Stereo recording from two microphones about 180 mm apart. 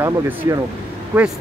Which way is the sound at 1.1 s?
5° right (ahead or behind).